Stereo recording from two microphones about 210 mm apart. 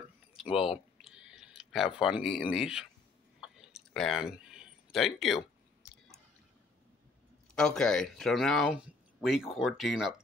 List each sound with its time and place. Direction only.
0.5 s speech: 25° left (ahead or behind)
1.0 s chewing: 5° right (ahead or behind)
2.0 s speech: centre (ahead or behind)
3.3 s a sound: centre (ahead or behind)
7.5 s speech: centre (ahead or behind)